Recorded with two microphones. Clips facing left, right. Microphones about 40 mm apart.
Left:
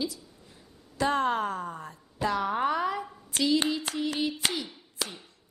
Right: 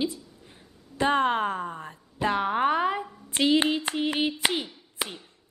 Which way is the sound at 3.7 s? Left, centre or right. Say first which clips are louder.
Right 3 dB; right.